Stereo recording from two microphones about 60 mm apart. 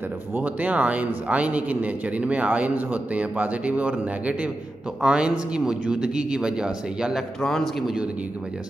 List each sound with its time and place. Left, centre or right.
0.4 s a man's voice: right
7.4 s a man's voice: centre
7.8 s speech: centre